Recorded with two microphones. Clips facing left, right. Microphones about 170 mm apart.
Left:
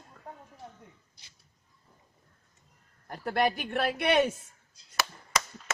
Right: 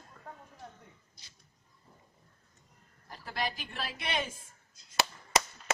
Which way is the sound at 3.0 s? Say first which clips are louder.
Left 9 dB; 60° left (ahead or behind).